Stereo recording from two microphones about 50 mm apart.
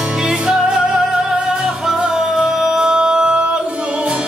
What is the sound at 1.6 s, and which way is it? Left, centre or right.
Music, centre.